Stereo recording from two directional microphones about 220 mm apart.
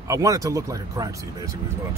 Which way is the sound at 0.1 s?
15° right (ahead or behind).